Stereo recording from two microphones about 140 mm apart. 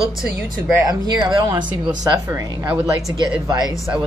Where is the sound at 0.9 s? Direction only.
30° right (ahead or behind).